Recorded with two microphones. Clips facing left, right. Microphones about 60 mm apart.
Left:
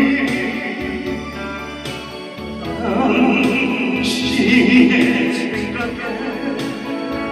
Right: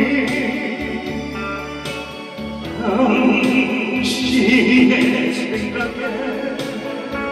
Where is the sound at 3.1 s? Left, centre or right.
Left.